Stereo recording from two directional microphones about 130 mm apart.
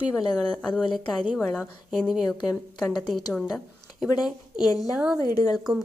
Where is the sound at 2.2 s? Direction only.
30° left (ahead or behind).